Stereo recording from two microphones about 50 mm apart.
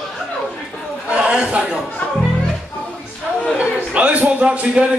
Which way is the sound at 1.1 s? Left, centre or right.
Right.